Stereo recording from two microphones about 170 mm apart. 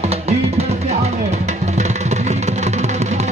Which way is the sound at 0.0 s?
40° right (ahead or behind).